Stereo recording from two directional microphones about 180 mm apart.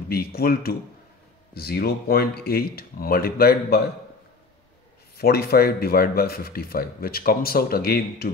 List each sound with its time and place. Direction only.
0.1 s speech: 55° left (ahead or behind)
5.1 s speech: 60° left (ahead or behind)